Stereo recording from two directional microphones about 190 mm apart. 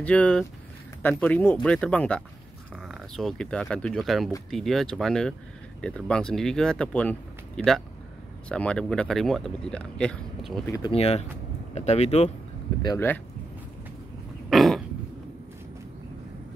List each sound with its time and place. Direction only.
0.0 s speech: 5° left (ahead or behind)
10.9 s speech: 30° left (ahead or behind)
12.8 s speech: 15° left (ahead or behind)
14.5 s throat clearing: centre (ahead or behind)